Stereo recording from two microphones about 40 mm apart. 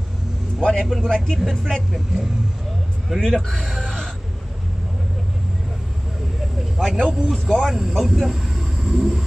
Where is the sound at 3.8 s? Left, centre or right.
Centre.